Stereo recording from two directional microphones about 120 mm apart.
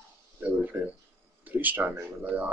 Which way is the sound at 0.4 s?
15° right (ahead or behind).